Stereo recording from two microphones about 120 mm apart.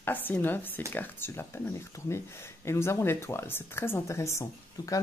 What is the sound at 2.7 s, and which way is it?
Speech, 25° left (ahead or behind).